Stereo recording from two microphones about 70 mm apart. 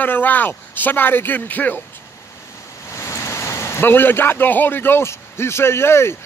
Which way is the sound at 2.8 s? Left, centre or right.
Left.